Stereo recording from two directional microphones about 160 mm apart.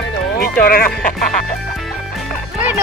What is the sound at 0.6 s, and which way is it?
Speech, 65° left (ahead or behind).